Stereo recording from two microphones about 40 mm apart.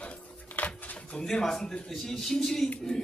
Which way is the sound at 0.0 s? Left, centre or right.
Left.